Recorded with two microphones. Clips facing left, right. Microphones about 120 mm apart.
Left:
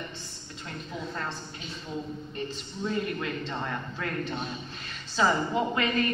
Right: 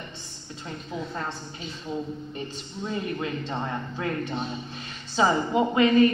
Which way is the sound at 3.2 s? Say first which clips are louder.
Right 3 dB; 20° right (ahead or behind).